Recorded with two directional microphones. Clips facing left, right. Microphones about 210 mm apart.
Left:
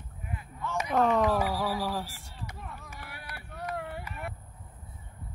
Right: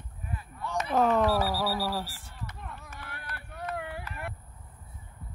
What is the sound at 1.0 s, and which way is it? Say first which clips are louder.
Speech: right 1 dB; 5° right (ahead or behind).